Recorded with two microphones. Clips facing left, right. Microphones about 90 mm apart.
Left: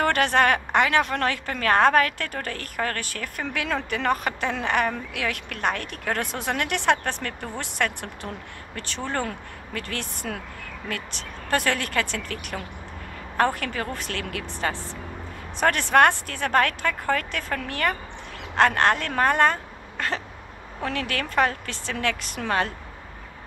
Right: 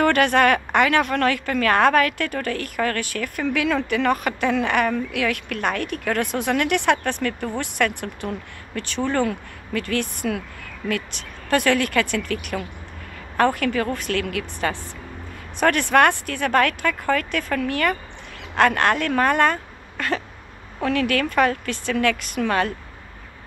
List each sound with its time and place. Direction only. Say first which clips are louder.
0.0 s a woman's voice: right 3 dB; 30° left (ahead or behind)